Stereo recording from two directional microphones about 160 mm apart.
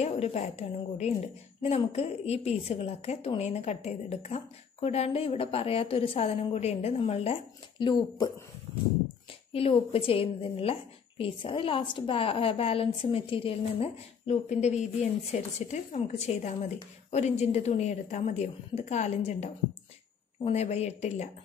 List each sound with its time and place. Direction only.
0.0 s a woman's voice: 45° left (ahead or behind)
7.8 s speech: 25° left (ahead or behind)
9.5 s a woman's voice: 40° left (ahead or behind)